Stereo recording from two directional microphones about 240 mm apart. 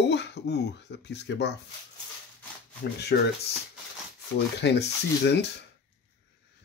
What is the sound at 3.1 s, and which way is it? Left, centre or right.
Speech, left.